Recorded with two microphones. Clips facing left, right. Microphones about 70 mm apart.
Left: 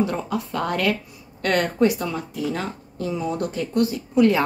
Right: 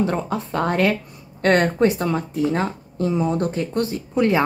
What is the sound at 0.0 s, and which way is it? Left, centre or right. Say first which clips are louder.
Speech: right 2 dB; right.